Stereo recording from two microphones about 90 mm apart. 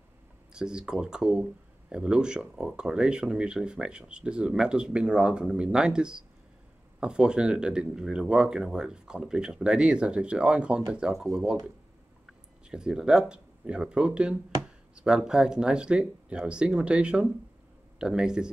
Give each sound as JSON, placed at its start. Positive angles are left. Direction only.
{"t": 0.5, "sound": "speech", "side_deg": -10}
{"t": 12.6, "sound": "speech", "side_deg": -10}